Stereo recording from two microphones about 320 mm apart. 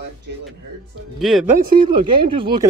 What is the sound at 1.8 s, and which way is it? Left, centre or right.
Speech, centre.